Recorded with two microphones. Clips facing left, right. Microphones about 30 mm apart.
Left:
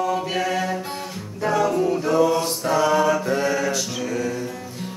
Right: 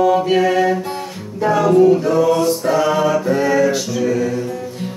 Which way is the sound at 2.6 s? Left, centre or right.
Centre.